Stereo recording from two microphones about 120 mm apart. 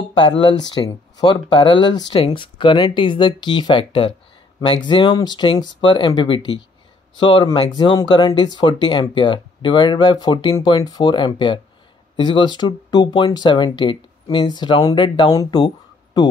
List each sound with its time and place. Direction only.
0.1 s speech: 40° left (ahead or behind)